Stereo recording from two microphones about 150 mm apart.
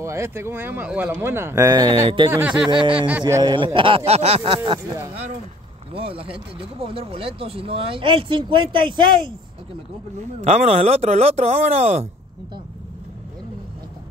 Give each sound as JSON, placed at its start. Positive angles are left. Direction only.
{"t": 0.0, "sound": "speech", "side_deg": -20}
{"t": 2.0, "sound": "speech", "side_deg": -35}
{"t": 2.3, "sound": "speech", "side_deg": -10}
{"t": 3.4, "sound": "speech", "side_deg": -35}
{"t": 5.9, "sound": "speech", "side_deg": -40}
{"t": 10.4, "sound": "speech", "side_deg": -45}